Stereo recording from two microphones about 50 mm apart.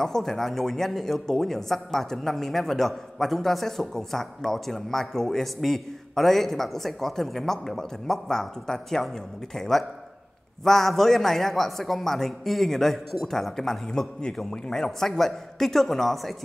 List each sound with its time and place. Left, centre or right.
0.0 s a man's voice: centre